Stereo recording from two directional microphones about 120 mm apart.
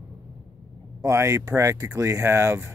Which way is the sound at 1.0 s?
25° right (ahead or behind).